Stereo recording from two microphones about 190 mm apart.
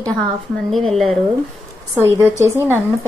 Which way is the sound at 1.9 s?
15° right (ahead or behind).